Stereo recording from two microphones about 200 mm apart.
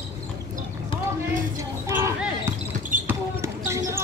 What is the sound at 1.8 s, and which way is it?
Basketball bounce, 15° right (ahead or behind).